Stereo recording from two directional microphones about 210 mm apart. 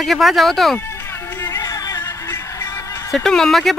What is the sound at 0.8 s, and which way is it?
Music, 10° left (ahead or behind).